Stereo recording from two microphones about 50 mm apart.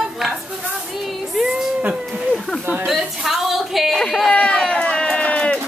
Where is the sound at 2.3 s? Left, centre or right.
Centre.